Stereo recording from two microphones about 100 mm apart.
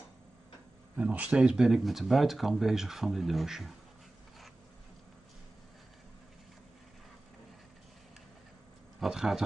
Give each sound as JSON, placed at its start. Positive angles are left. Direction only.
{"t": 0.9, "sound": "speech", "side_deg": -15}
{"t": 9.0, "sound": "speech", "side_deg": -5}